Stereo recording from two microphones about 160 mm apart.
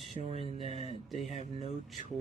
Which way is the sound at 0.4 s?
35° left (ahead or behind).